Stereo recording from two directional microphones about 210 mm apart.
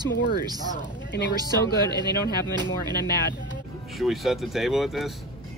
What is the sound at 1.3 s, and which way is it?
Speech, 20° right (ahead or behind).